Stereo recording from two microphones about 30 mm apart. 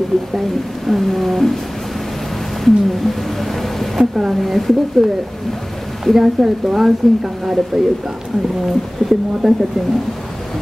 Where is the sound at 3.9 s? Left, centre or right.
Centre.